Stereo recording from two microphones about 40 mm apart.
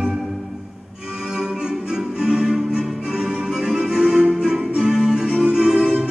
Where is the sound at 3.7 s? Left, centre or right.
Centre.